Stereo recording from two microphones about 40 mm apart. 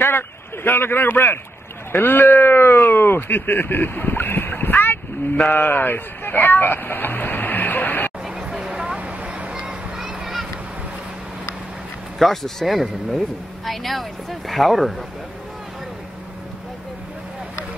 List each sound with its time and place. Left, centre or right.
0.7 s speech: left
8.4 s a sound: centre
12.2 s speech: centre